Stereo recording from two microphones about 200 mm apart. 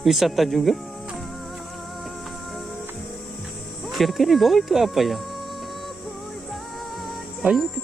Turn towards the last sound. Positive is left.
turn(degrees=0)  # may be behind; listen again after turning